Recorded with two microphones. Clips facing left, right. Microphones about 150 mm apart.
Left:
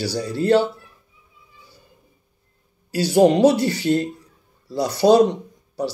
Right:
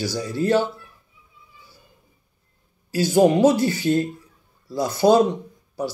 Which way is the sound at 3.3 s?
75° left (ahead or behind).